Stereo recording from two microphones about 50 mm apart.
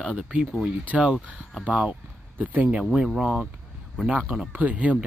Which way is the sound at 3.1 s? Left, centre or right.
Centre.